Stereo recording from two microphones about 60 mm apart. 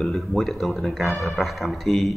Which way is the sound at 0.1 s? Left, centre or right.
Centre.